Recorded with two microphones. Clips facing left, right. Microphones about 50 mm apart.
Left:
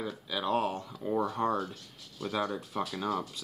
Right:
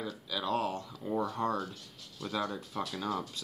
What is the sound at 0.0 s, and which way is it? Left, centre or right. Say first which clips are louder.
Speech: left 2 dB; left.